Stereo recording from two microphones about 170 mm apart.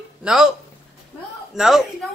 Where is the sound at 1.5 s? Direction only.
Centre (ahead or behind).